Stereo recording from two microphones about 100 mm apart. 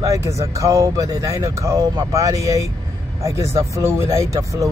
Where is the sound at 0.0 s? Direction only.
30° right (ahead or behind).